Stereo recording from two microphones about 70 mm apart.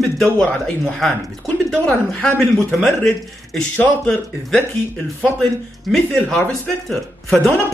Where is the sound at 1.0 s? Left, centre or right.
Centre.